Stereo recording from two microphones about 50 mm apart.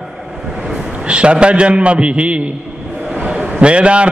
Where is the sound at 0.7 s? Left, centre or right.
Centre.